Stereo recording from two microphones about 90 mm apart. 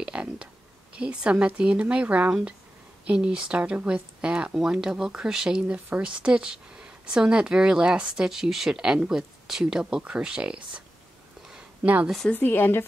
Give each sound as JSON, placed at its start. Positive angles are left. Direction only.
{"t": 0.0, "sound": "speech", "side_deg": -10}
{"t": 11.4, "sound": "a sound", "side_deg": -10}
{"t": 12.3, "sound": "a woman's voice", "side_deg": 20}